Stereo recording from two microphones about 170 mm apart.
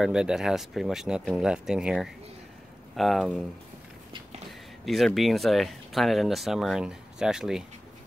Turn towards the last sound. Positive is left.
turn(degrees=-5)  # may be behind; listen again after turning